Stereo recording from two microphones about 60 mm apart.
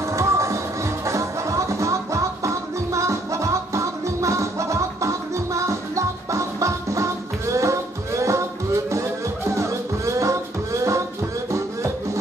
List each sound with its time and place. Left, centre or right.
0.0 s music: right